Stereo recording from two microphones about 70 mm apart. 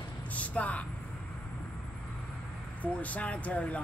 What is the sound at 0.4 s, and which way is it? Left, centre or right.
Speech, left.